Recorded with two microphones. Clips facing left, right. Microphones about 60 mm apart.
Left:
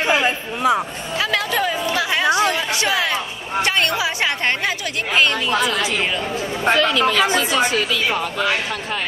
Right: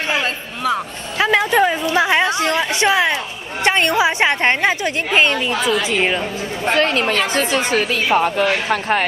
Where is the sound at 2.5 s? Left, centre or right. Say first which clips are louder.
Right 4 dB; right.